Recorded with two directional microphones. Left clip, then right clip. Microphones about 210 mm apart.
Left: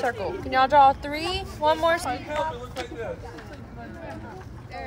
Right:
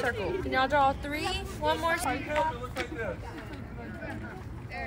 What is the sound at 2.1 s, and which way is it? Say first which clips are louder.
Speech: left 1 dB; 50° left (ahead or behind).